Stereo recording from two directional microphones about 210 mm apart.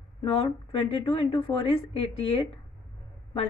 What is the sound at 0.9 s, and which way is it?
Speech, 25° left (ahead or behind).